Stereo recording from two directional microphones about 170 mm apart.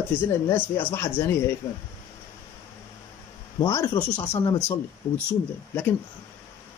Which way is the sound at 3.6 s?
15° left (ahead or behind).